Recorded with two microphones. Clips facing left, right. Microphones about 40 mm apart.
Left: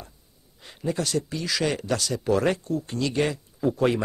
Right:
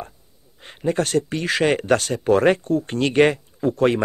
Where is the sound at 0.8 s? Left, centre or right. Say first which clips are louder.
Right 6 dB; right.